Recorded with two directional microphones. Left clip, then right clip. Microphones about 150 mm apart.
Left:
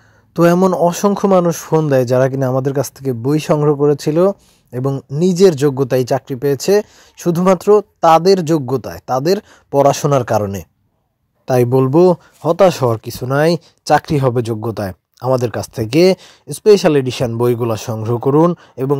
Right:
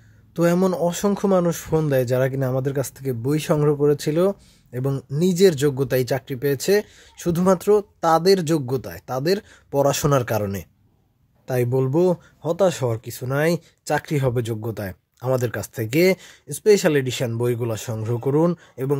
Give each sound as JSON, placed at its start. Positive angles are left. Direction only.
{"t": 0.3, "sound": "speech", "side_deg": 40}
{"t": 11.4, "sound": "speech", "side_deg": 45}